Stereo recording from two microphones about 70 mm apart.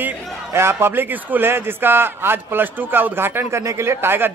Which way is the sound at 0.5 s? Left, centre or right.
Right.